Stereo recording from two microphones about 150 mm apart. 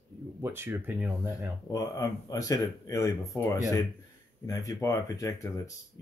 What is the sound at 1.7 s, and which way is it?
Speech, 20° left (ahead or behind).